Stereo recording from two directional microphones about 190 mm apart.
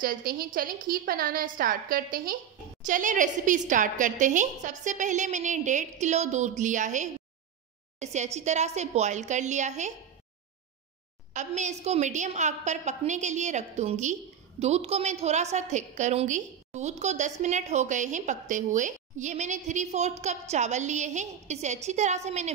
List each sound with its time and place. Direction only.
0.0 s a woman's voice: 50° right (ahead or behind)
11.3 s a woman's voice: 40° right (ahead or behind)